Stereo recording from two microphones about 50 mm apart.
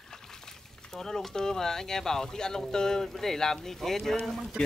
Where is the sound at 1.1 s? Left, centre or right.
Centre.